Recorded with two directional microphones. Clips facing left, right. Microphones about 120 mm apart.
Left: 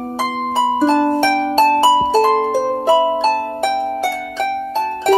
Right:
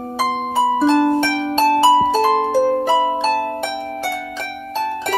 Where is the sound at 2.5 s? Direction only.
15° left (ahead or behind).